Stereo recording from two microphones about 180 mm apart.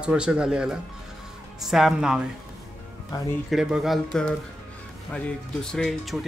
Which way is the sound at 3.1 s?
25° left (ahead or behind).